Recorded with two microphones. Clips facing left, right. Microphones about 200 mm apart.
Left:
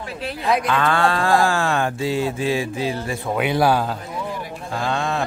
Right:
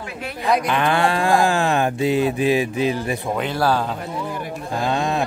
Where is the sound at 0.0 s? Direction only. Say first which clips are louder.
Left 2 dB; 35° left (ahead or behind).